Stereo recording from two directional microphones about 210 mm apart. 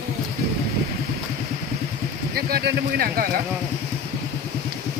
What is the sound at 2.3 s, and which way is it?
Speech, 45° right (ahead or behind).